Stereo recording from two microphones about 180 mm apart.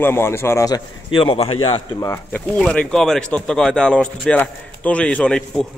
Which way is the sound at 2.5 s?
5° left (ahead or behind).